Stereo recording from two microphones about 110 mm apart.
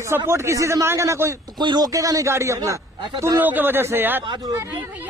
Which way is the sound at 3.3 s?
15° right (ahead or behind).